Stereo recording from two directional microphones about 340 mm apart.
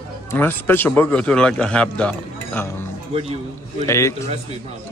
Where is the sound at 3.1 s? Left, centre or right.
Centre.